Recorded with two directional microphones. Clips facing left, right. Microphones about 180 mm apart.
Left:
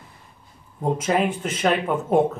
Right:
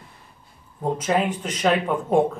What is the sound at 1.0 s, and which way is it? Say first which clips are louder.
Speech: even; 10° left (ahead or behind).